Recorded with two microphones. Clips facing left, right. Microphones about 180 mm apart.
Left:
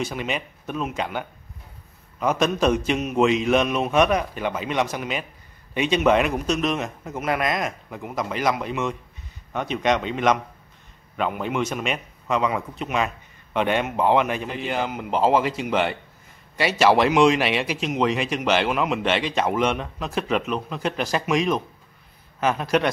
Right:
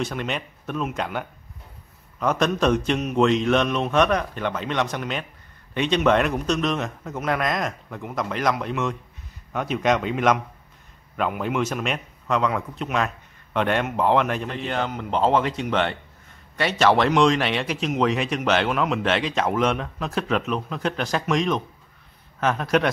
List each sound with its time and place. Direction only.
0.0 s a man's voice: 5° left (ahead or behind)